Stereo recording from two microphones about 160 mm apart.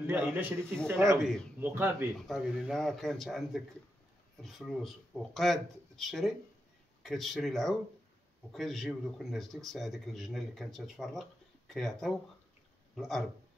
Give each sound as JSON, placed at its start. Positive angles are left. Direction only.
{"t": 0.0, "sound": "a man's voice", "side_deg": -10}
{"t": 0.6, "sound": "speech", "side_deg": 5}
{"t": 0.8, "sound": "speech", "side_deg": -15}
{"t": 1.2, "sound": "speech", "side_deg": 0}
{"t": 1.6, "sound": "speech", "side_deg": -15}
{"t": 2.1, "sound": "a man's voice", "side_deg": 0}